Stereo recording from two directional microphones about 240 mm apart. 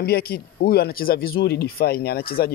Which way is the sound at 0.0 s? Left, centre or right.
Left.